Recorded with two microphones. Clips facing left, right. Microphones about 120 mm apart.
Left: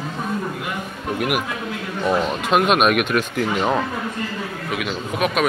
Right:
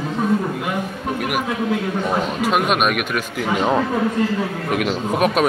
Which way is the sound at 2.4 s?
5° right (ahead or behind).